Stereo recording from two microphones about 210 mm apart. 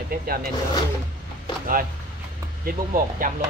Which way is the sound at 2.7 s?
40° right (ahead or behind).